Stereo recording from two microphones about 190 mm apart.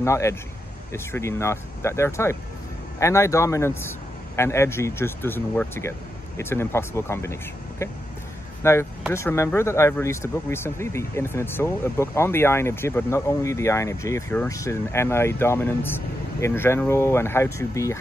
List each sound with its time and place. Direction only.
0.0 s speech: 15° left (ahead or behind)